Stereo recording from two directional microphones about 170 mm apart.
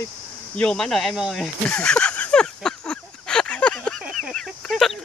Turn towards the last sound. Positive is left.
turn(degrees=0)  # may be behind; listen again after turning